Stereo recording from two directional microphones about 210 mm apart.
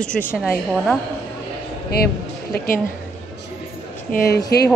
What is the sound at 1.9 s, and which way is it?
Speech, 45° left (ahead or behind).